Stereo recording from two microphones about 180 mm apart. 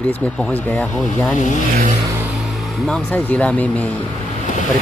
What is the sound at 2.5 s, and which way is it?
Speech, centre (ahead or behind).